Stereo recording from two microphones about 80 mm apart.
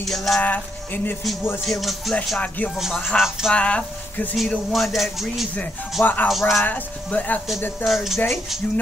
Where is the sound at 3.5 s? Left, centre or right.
Centre.